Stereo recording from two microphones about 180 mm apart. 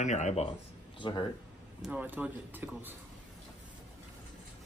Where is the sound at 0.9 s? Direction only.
25° left (ahead or behind).